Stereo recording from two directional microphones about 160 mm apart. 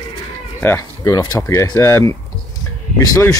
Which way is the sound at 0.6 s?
15° left (ahead or behind).